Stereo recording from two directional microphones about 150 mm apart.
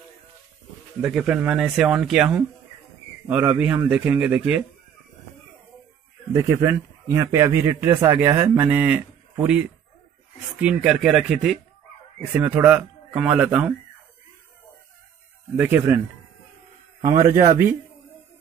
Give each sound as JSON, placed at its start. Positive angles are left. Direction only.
{"t": 1.0, "sound": "a man's voice", "side_deg": -5}
{"t": 6.3, "sound": "a man's voice", "side_deg": -20}
{"t": 10.6, "sound": "a man's voice", "side_deg": -5}
{"t": 15.5, "sound": "a man's voice", "side_deg": -10}
{"t": 17.0, "sound": "a man's voice", "side_deg": -25}